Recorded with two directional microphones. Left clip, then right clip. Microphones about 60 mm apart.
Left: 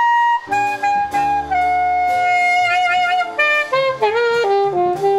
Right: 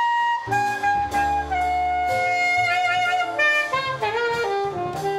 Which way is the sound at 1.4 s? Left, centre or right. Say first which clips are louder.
Left 6 dB; centre.